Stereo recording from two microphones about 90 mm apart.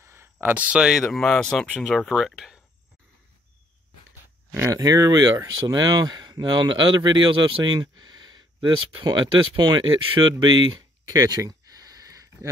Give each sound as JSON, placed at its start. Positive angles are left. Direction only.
{"t": 0.0, "sound": "a man's voice", "side_deg": -25}
{"t": 4.6, "sound": "speech", "side_deg": -40}
{"t": 5.7, "sound": "speech", "side_deg": -50}
{"t": 10.4, "sound": "a sound", "side_deg": -55}